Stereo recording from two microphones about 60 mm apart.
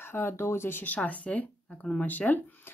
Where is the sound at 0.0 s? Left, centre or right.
Left.